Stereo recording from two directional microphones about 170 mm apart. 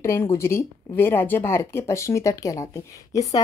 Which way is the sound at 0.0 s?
15° left (ahead or behind).